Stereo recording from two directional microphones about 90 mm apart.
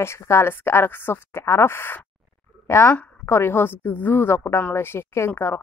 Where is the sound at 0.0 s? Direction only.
30° left (ahead or behind).